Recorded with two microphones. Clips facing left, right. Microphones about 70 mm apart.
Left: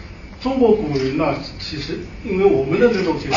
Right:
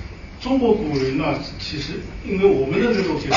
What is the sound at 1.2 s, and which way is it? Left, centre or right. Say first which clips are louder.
A man's voice: left 2 dB; left.